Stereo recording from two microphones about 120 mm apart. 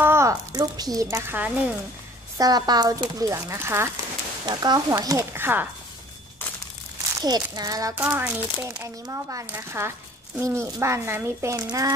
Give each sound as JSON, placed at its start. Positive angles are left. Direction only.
{"t": 0.0, "sound": "a sound", "side_deg": -20}
{"t": 1.0, "sound": "a woman's voice", "side_deg": -15}
{"t": 2.3, "sound": "speech", "side_deg": -35}
{"t": 4.5, "sound": "speech", "side_deg": -35}
{"t": 7.2, "sound": "speech", "side_deg": -35}
{"t": 7.9, "sound": "speech", "side_deg": -15}